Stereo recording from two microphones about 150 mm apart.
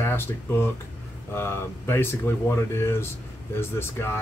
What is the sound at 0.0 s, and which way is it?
A man's voice, 15° left (ahead or behind).